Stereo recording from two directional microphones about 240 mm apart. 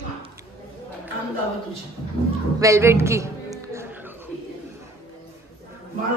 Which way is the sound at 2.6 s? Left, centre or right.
Centre.